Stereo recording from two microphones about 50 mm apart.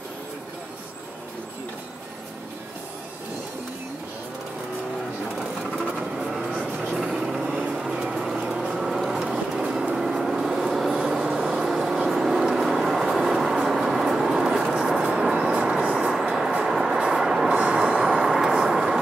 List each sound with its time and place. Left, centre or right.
5.9 s vehicle: centre
6.6 s vehicle: right
6.9 s vehicle: centre
7.4 s vehicle: right
12.1 s train: centre
15.3 s vehicle: centre
16.3 s train: centre
17.9 s vehicle: centre